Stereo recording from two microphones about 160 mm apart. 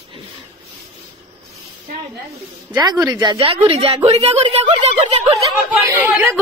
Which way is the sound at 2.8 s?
25° right (ahead or behind).